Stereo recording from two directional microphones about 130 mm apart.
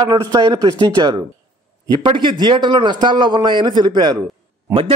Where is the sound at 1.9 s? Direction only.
35° right (ahead or behind).